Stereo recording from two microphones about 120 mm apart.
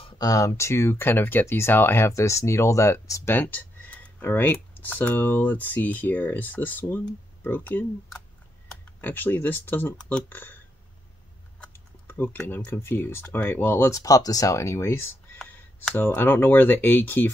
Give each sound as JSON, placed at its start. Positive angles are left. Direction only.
{"t": 0.2, "sound": "speech", "side_deg": 30}
{"t": 9.0, "sound": "speech", "side_deg": 15}
{"t": 12.1, "sound": "speech", "side_deg": 15}
{"t": 15.3, "sound": "speech", "side_deg": 10}